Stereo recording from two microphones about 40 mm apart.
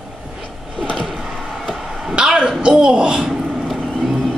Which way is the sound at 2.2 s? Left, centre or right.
Right.